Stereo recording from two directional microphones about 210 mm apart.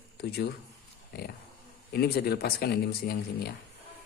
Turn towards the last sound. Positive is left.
turn(degrees=45)  # may be behind; listen again after turning